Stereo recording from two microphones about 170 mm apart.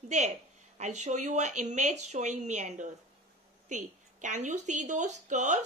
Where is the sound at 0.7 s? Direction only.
45° right (ahead or behind).